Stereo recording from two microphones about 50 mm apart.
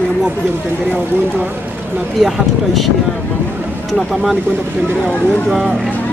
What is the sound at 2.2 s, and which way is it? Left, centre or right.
Speech, centre.